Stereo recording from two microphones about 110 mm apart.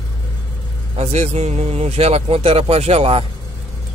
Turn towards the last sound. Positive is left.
turn(degrees=-60)  # may be behind; listen again after turning